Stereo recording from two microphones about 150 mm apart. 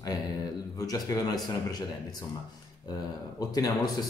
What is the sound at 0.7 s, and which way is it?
A man's voice, 25° left (ahead or behind).